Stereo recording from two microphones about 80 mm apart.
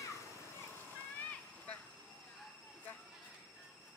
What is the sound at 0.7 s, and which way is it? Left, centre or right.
Cat, centre.